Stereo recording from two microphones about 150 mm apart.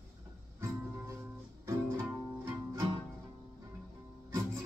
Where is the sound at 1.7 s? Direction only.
20° right (ahead or behind).